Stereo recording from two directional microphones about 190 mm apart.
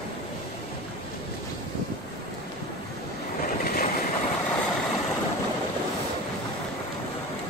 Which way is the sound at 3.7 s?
50° left (ahead or behind).